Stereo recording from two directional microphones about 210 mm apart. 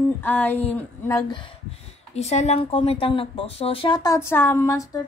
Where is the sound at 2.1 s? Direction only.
30° left (ahead or behind); by 5.0 s 15° left (ahead or behind).